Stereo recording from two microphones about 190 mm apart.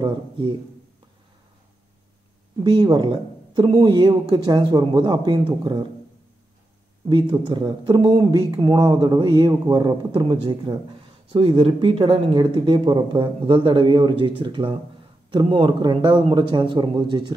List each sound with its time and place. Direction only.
0.0 s speech: 25° right (ahead or behind)
2.6 s speech: 20° right (ahead or behind)
7.1 s speech: 25° right (ahead or behind)